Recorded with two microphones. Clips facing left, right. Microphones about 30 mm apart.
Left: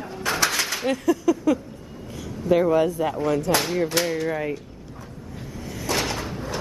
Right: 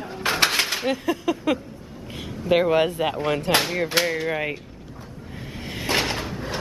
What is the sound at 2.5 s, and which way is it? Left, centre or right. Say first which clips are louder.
Speech: even; right.